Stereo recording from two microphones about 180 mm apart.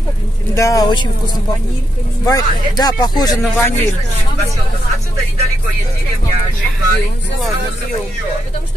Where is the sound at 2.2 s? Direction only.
20° left (ahead or behind).